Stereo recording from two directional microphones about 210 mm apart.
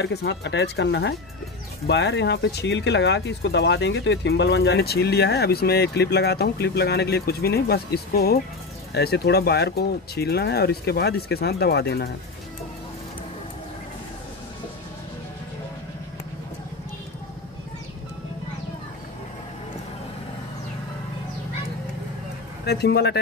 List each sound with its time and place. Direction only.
0.0 s speech: 55° left (ahead or behind)
22.7 s speech: 50° left (ahead or behind)